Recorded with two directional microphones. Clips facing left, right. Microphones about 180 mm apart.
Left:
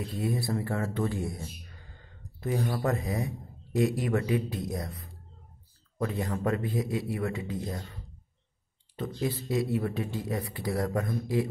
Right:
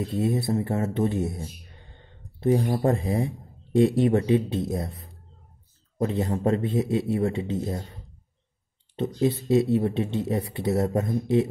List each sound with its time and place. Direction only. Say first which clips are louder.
0.0 s speech: right 6 dB; 25° right (ahead or behind)